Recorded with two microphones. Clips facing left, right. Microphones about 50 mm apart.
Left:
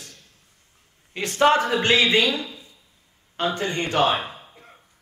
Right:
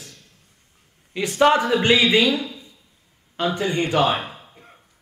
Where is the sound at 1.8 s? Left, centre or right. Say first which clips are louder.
Right 2 dB; centre.